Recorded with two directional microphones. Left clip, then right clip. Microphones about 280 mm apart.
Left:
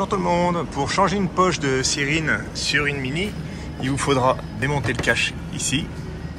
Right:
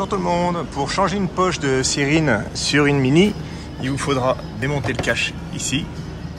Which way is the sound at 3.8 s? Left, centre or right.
Centre.